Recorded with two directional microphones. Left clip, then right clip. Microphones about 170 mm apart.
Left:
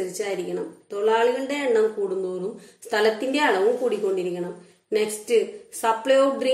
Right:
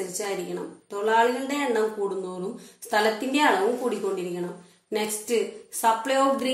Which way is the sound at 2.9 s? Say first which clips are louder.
Left 2 dB; 20° left (ahead or behind).